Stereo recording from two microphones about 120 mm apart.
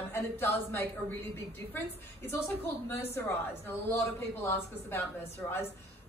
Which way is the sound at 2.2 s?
20° left (ahead or behind).